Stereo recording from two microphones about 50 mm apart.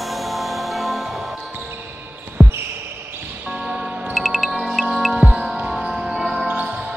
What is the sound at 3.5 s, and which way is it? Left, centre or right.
Music, right.